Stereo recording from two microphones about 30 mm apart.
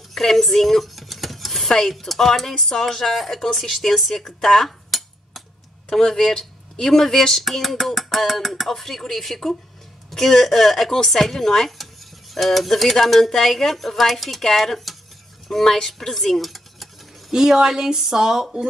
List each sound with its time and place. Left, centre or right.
0.1 s a sound: centre
1.7 s speech: centre
11.8 s stir: centre
13.3 s speech: centre
16.0 s a sound: centre
17.3 s speech: centre